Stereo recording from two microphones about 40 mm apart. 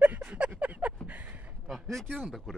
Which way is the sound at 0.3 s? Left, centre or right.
Right.